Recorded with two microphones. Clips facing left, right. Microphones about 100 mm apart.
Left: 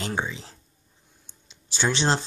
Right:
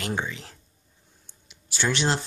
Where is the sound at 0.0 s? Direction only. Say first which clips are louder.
Left 1 dB; 15° left (ahead or behind).